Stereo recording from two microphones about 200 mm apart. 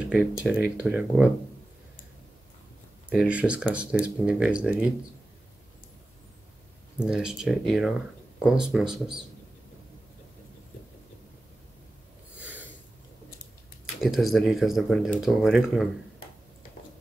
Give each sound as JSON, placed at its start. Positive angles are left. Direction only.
{"t": 0.1, "sound": "speech", "side_deg": -5}
{"t": 3.1, "sound": "speech", "side_deg": -5}
{"t": 7.0, "sound": "speech", "side_deg": -5}
{"t": 12.4, "sound": "snort", "side_deg": -10}
{"t": 14.0, "sound": "speech", "side_deg": 0}